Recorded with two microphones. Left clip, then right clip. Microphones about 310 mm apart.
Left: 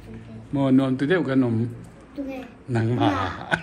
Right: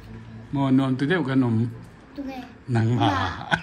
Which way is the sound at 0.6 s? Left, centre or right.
Centre.